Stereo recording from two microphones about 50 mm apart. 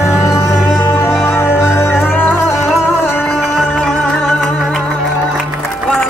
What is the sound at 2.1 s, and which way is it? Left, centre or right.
Music, left.